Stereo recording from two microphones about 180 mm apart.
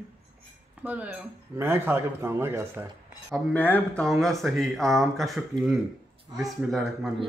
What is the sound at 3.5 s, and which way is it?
Speech, 10° left (ahead or behind).